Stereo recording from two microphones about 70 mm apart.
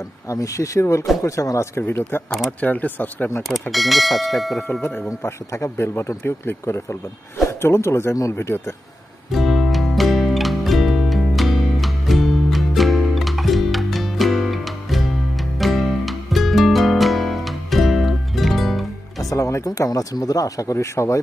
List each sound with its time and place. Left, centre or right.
0.3 s speech: left
1.8 s speech: left
2.6 s speech: left
3.7 s speech: centre
5.2 s speech: left
9.3 s music: centre
19.2 s music: left
19.9 s speech: left
20.7 s speech: left